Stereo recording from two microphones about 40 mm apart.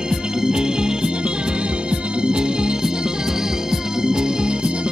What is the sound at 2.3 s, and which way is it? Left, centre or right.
Music, right.